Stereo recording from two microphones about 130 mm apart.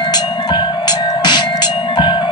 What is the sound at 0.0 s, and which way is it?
Music, 35° left (ahead or behind).